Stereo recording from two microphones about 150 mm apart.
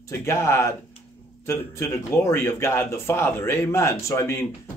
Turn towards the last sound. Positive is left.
turn(degrees=20)  # may be behind; listen again after turning